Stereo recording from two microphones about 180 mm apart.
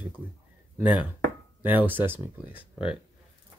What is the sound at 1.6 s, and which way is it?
Speech, 10° right (ahead or behind).